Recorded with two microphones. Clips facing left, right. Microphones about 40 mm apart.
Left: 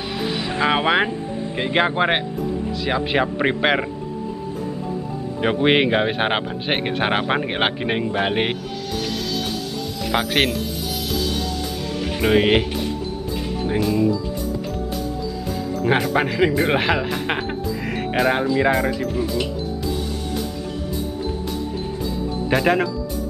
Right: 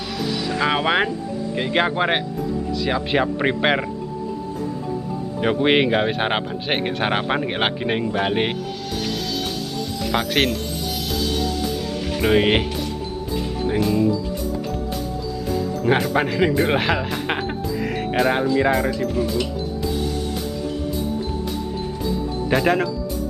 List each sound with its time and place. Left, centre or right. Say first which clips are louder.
0.6 s speech: left 2 dB; centre
5.4 s speech: even; centre
10.0 s speech: left 1 dB; centre
12.2 s speech: left 1 dB; centre
13.7 s speech: even; centre
15.8 s speech: left 1 dB; centre
22.0 s music: right 2 dB; centre